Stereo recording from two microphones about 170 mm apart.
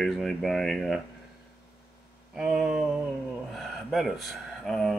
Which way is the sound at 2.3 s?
5° right (ahead or behind).